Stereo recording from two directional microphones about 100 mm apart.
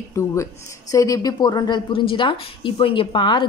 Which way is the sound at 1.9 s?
60° left (ahead or behind).